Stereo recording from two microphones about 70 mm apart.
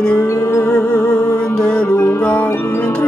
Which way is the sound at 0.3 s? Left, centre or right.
Left.